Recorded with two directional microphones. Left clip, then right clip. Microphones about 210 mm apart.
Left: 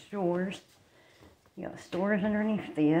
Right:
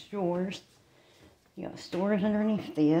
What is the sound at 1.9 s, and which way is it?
Speech, 20° right (ahead or behind).